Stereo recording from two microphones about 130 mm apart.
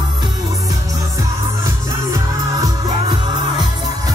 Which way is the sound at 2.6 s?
30° right (ahead or behind).